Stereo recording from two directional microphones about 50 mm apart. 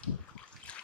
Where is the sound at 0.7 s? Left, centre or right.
Left.